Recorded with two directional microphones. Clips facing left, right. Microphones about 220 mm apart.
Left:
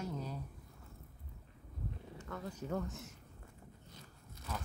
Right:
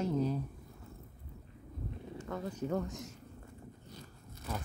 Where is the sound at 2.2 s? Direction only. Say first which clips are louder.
Right 5 dB; 20° right (ahead or behind).